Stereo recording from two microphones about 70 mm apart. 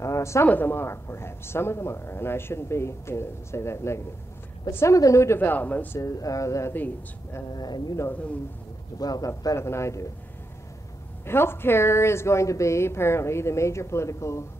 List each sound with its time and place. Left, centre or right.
0.0 s a sound: left
0.5 s speech: left
5.4 s speech: left
5.9 s speech: left
7.4 s speech: left
8.1 s speech: left
9.0 s a man's voice: left
9.6 s speech: left
11.2 s speech: left